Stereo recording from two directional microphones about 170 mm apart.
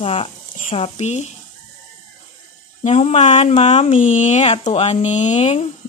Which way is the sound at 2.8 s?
40° left (ahead or behind).